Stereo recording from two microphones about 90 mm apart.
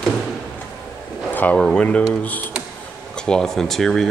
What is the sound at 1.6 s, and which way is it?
Speech, 5° left (ahead or behind).